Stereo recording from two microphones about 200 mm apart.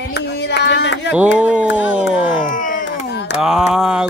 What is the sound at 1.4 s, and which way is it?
Speech, 5° right (ahead or behind).